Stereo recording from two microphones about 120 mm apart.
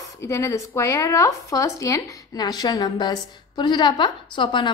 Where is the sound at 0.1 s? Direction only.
25° left (ahead or behind).